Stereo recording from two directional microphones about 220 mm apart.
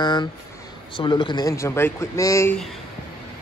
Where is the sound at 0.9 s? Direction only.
20° left (ahead or behind).